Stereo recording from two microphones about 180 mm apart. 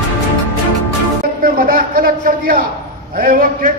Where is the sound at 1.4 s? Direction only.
50° right (ahead or behind).